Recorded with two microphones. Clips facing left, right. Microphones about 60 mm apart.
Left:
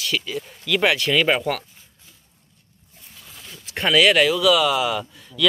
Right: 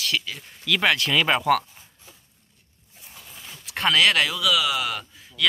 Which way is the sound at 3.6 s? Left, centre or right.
Centre.